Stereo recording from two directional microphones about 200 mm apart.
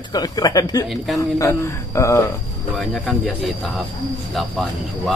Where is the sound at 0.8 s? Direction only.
Centre (ahead or behind).